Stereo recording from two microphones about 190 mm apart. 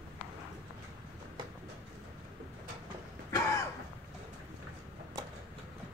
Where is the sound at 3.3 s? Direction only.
20° left (ahead or behind).